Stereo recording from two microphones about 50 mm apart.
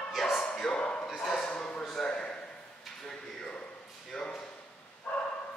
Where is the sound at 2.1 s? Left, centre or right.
Centre.